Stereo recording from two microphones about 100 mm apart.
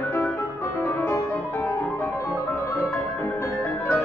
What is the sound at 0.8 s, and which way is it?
Music, 30° left (ahead or behind).